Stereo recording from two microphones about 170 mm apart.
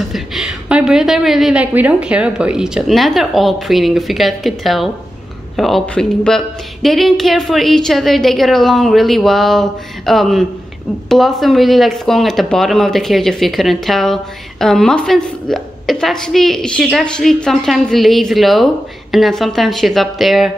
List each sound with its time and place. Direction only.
0.1 s speech: centre (ahead or behind)